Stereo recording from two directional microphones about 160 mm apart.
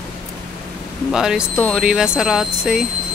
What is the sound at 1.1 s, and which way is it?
Speech, 5° right (ahead or behind).